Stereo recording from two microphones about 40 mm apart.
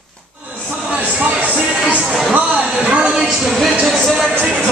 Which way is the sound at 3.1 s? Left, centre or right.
Centre.